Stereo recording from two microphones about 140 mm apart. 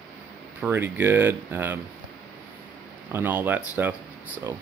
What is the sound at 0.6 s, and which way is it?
Speech, 15° right (ahead or behind).